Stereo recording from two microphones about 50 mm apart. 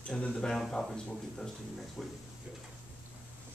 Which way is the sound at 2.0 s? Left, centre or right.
Centre.